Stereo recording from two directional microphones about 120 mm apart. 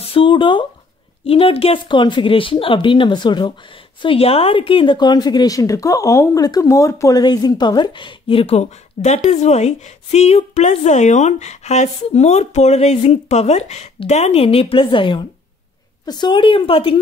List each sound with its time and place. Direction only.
0.0 s speech: 50° left (ahead or behind)
1.2 s speech: 55° left (ahead or behind)
4.0 s speech: 50° left (ahead or behind)